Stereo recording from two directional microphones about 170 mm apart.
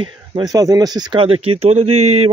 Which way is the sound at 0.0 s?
25° right (ahead or behind).